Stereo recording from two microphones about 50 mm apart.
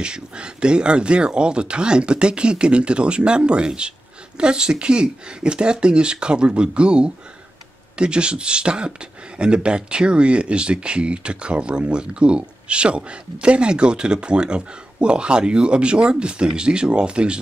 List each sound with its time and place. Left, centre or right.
0.0 s speech: centre